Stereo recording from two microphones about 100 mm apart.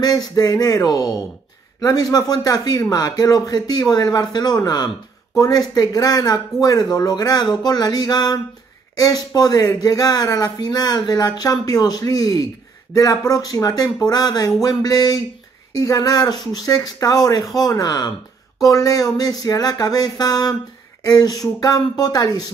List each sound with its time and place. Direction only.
0.0 s speech: 40° left (ahead or behind)